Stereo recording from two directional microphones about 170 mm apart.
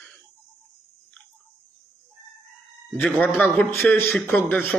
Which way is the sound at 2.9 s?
5° left (ahead or behind).